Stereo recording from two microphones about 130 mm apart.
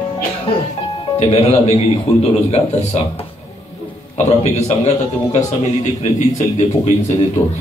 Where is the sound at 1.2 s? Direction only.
55° left (ahead or behind).